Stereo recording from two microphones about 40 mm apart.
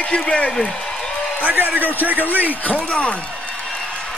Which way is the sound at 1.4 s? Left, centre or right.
Right.